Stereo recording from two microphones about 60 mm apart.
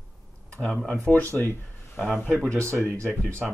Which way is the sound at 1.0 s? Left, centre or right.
Left.